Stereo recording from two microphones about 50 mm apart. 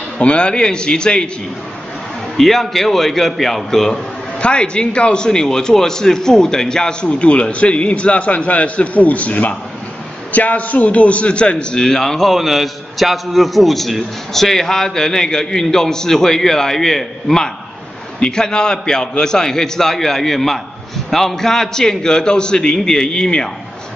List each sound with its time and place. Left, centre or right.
0.2 s a man's voice: left
2.3 s a man's voice: centre
4.4 s a man's voice: centre